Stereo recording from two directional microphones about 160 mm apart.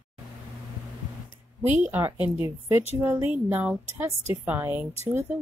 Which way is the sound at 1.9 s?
15° right (ahead or behind).